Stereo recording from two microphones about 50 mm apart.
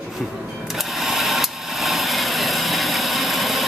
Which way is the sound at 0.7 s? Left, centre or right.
Centre.